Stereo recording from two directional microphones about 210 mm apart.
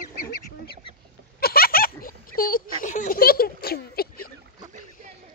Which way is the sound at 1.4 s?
45° left (ahead or behind).